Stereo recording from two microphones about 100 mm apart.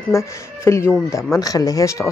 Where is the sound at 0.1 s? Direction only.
30° left (ahead or behind).